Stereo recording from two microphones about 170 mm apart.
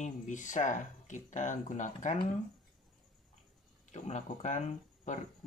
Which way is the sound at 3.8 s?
45° left (ahead or behind).